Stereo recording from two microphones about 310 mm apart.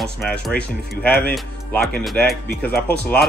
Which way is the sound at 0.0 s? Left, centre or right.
Centre.